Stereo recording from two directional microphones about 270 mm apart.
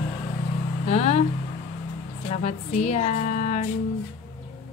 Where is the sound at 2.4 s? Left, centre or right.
Left.